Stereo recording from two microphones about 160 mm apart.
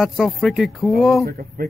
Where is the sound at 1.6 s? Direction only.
70° right (ahead or behind).